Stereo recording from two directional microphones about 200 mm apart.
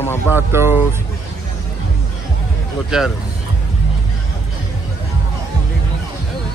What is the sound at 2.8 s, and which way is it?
Speech, centre (ahead or behind).